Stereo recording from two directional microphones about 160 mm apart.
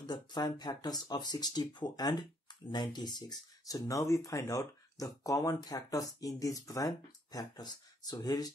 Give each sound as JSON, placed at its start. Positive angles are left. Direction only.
{"t": 0.0, "sound": "speech", "side_deg": 25}